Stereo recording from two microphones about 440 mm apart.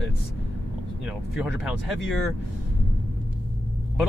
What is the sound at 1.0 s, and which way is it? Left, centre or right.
Speech, centre.